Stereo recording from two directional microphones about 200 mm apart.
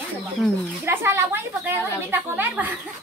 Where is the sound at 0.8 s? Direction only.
10° right (ahead or behind).